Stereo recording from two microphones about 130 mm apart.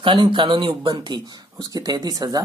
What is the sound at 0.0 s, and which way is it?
Speech, 40° right (ahead or behind).